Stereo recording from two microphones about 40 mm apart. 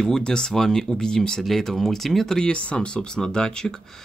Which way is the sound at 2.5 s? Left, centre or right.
Left.